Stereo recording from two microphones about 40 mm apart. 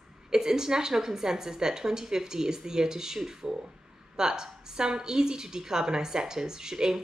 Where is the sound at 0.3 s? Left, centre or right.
Centre.